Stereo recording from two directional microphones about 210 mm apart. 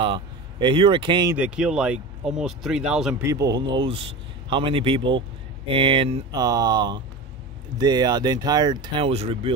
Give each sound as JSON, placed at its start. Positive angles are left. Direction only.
{"t": 0.0, "sound": "speech", "side_deg": -25}
{"t": 1.3, "sound": "speech", "side_deg": -5}
{"t": 3.3, "sound": "speech", "side_deg": -15}